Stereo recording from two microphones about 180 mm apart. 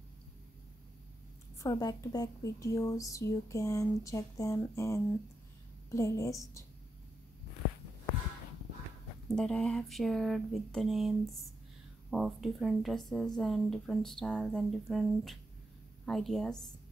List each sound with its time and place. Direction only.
1.6 s speech: 20° left (ahead or behind)
9.3 s speech: 5° left (ahead or behind)